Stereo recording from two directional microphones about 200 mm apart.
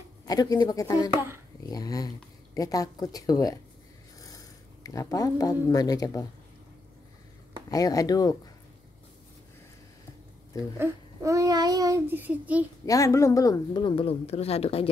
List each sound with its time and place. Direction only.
0.2 s speech: 20° left (ahead or behind)
7.7 s speech: 15° left (ahead or behind)
10.8 s a child's voice: 15° right (ahead or behind)
12.8 s speech: 15° left (ahead or behind)